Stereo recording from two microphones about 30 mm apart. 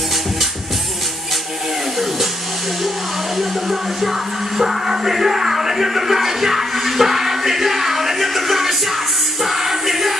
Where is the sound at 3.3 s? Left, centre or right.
Centre.